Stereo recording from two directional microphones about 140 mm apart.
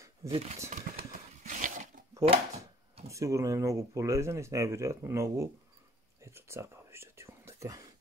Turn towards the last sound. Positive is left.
turn(degrees=-25)  # may be behind; listen again after turning